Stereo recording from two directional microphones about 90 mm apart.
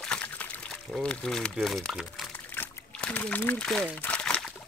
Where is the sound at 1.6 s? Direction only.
5° left (ahead or behind).